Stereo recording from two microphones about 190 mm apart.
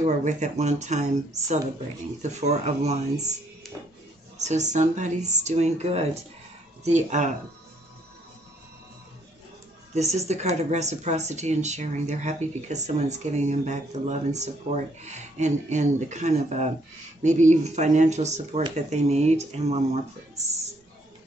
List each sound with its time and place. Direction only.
0.0 s speech: 40° right (ahead or behind)
3.6 s music: centre (ahead or behind)
4.4 s speech: 40° right (ahead or behind)
9.9 s speech: 35° right (ahead or behind)